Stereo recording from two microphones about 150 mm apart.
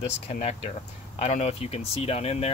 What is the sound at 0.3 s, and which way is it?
Speech, 45° left (ahead or behind).